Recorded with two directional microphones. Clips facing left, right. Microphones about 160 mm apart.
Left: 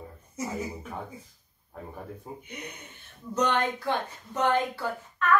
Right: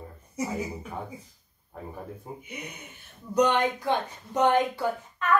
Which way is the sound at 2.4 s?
10° right (ahead or behind).